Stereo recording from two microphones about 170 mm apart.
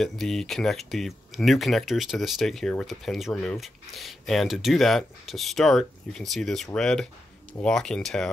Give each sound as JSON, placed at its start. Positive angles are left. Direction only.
{"t": 0.0, "sound": "speech", "side_deg": 0}